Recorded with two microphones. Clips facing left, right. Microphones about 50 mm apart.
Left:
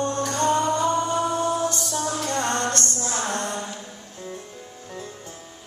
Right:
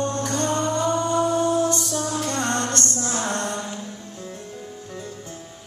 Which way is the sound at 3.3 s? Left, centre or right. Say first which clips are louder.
Right 1 dB; left.